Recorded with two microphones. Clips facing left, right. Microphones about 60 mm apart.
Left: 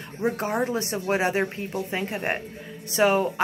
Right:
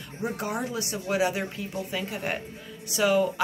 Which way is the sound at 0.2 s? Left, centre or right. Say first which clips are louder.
Left 5 dB; left.